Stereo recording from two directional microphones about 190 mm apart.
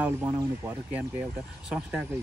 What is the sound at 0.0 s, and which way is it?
Speech, 15° right (ahead or behind).